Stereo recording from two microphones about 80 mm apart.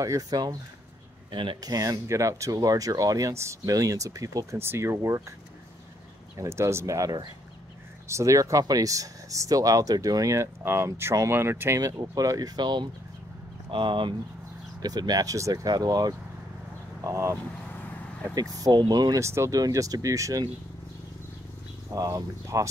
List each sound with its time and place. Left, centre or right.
0.0 s speech: right
1.3 s speech: right
1.6 s speech: right
4.6 s speech: right
6.3 s speech: right
11.8 s speech: right
13.7 s speech: right
14.8 s speech: right
17.0 s speech: right
17.6 s vehicle: centre
18.3 s speech: right
19.1 s speech: right
19.6 s speech: right
21.9 s speech: right